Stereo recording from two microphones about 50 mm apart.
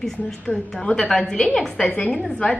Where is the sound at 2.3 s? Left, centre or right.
Left.